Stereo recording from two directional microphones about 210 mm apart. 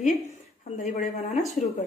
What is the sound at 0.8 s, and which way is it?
Speech, 35° left (ahead or behind).